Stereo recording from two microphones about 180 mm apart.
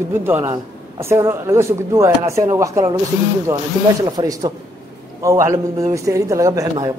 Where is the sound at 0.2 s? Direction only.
10° right (ahead or behind).